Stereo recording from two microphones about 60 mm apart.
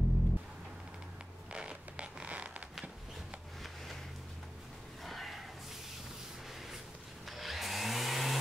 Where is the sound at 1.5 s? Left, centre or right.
Centre.